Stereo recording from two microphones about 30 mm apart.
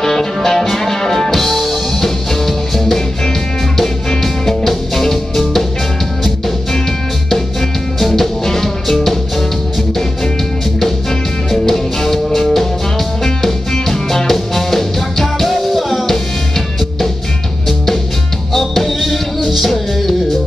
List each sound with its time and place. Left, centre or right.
0.0 s music: centre
1.3 s music: centre
4.5 s music: centre
8.0 s music: centre
10.8 s music: centre
13.2 s music: centre
18.5 s music: centre